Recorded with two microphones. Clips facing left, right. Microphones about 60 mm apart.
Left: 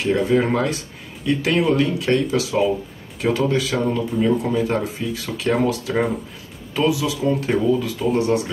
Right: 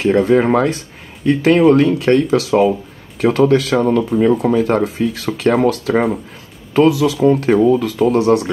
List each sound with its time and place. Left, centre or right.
0.1 s speech: right
0.4 s speech: right
8.1 s speech: right